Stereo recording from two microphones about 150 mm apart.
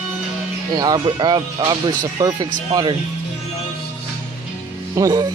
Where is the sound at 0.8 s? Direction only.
30° right (ahead or behind).